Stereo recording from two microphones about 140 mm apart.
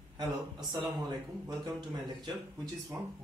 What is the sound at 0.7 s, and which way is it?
A man's voice, 30° right (ahead or behind).